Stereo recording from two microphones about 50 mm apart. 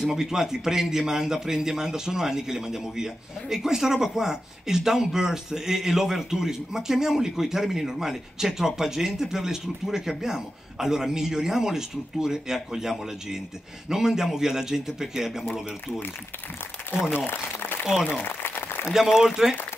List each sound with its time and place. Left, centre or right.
0.0 s a man's voice: centre
17.1 s speech: left
18.4 s applause: left
18.9 s a man's voice: centre